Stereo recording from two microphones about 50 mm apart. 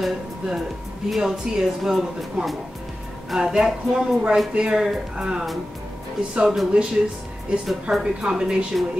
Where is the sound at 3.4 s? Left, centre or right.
Centre.